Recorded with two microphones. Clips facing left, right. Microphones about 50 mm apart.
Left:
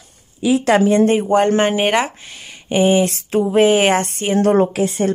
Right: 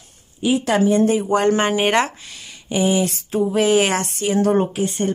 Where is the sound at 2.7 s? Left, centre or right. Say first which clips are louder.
Left 4 dB; left.